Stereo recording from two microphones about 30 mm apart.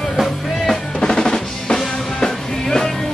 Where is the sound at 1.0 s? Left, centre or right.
Left.